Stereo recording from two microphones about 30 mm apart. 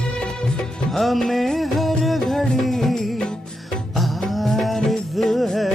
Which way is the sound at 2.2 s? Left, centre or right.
Centre.